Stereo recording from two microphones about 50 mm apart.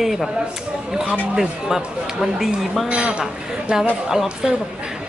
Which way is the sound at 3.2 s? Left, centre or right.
Centre.